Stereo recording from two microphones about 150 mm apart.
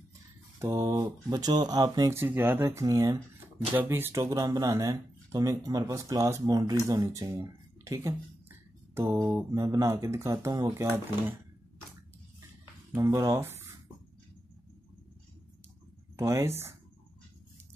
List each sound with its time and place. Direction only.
0.6 s speech: 20° right (ahead or behind)
7.1 s speech: 15° right (ahead or behind)
12.9 s speech: 20° right (ahead or behind)
16.2 s speech: 20° right (ahead or behind)